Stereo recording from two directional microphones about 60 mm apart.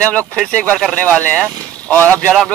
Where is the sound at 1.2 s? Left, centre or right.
Right.